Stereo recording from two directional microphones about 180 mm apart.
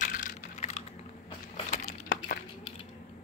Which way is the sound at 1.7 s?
45° left (ahead or behind).